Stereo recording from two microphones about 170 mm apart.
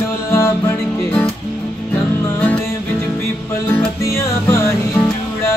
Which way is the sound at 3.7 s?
15° left (ahead or behind).